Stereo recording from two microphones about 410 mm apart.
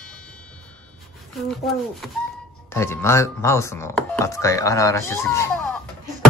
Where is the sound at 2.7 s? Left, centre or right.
Centre.